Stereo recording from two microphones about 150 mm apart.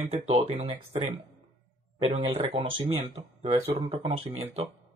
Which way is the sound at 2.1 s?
40° right (ahead or behind).